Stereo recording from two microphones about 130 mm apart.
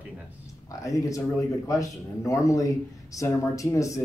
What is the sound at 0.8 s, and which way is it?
Speech, 25° left (ahead or behind).